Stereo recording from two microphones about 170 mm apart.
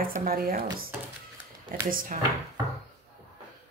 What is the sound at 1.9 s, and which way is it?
Speech, 55° right (ahead or behind).